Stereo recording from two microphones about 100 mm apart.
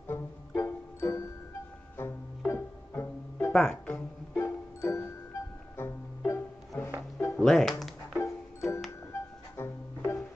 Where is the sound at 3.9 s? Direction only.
25° left (ahead or behind).